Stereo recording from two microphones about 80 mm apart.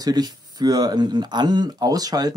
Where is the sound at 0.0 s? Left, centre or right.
Right.